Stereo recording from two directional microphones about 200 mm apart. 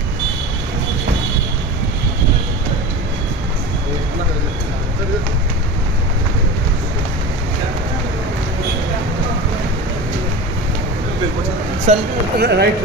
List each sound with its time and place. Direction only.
11.9 s speech: 35° right (ahead or behind)
12.4 s speech: 55° right (ahead or behind)